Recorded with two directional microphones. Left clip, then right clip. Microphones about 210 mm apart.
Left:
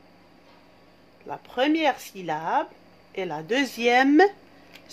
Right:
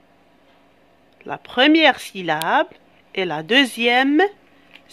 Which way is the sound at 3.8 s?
15° right (ahead or behind).